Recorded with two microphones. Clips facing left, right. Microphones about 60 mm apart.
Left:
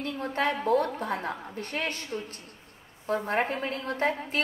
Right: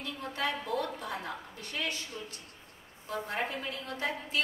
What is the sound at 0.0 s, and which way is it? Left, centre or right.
A woman's voice, left.